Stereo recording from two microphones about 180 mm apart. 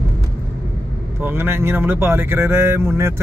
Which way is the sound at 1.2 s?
10° right (ahead or behind).